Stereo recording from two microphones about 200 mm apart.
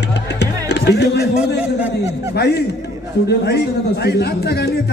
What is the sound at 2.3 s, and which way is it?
Speech, 55° left (ahead or behind).